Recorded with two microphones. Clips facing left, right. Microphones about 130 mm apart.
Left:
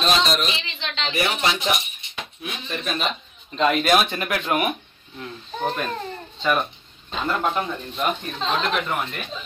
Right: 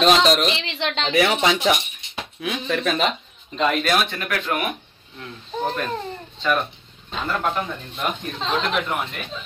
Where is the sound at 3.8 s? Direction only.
15° left (ahead or behind).